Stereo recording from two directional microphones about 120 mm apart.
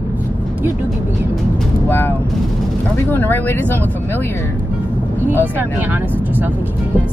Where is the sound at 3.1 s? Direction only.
15° left (ahead or behind).